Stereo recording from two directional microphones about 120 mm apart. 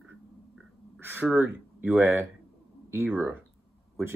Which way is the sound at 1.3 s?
15° right (ahead or behind).